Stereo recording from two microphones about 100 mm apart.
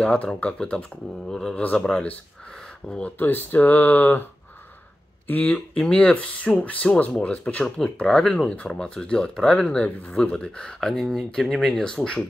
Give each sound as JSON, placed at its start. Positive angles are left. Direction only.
{"t": 0.0, "sound": "speech", "side_deg": 10}